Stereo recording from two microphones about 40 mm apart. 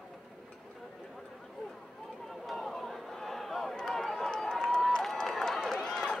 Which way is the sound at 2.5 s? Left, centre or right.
Centre.